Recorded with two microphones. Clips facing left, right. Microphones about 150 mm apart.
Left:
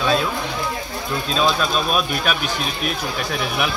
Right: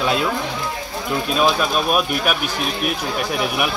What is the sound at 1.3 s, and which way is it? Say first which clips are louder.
Speech: right 1 dB; 10° right (ahead or behind).